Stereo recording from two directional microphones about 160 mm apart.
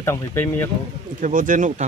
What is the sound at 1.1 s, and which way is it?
Speech, 55° right (ahead or behind).